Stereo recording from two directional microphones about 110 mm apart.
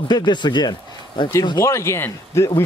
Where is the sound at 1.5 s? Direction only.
25° left (ahead or behind).